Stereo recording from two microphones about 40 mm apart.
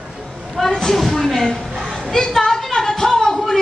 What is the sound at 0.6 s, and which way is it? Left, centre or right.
Speech, centre.